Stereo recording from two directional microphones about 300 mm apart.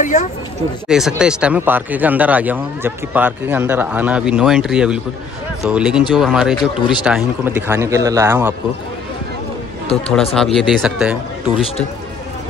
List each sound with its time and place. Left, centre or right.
0.0 s speech: left
0.8 s speech: centre
10.3 s speech: centre